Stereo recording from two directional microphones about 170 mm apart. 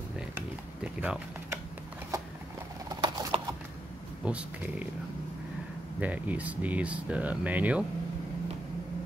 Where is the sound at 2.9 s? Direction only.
20° right (ahead or behind).